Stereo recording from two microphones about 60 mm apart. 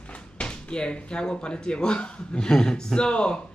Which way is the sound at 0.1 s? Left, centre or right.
Centre.